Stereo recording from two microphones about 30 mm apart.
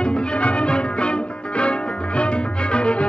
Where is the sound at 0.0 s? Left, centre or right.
Left.